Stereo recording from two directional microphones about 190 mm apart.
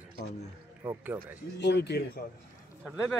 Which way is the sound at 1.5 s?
65° left (ahead or behind).